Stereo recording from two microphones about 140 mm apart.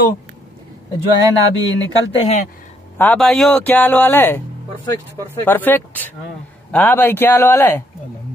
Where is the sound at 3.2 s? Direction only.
Centre (ahead or behind).